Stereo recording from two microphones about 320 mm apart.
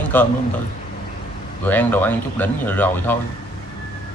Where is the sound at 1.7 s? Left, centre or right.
Centre.